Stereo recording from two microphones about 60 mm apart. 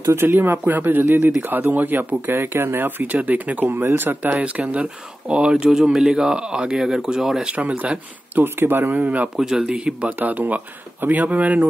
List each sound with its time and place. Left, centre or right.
0.1 s speech: right
3.6 s speech: right; by 7.4 s centre
7.4 s speech: right
8.5 s speech: right
9.4 s speech: centre
10.1 s speech: right